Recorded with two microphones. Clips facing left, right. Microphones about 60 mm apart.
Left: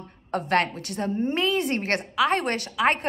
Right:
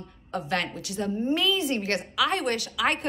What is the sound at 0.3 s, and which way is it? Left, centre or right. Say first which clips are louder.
A woman's voice: left 5 dB; left.